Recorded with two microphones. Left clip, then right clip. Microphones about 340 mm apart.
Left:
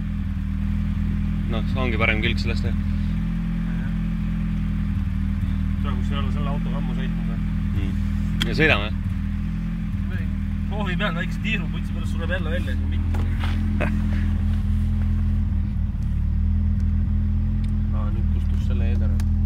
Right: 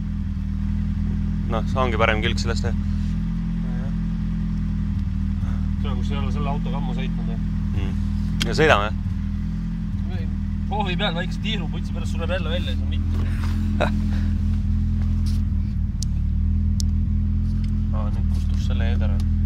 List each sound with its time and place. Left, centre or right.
1.5 s speech: right
8.5 s speech: right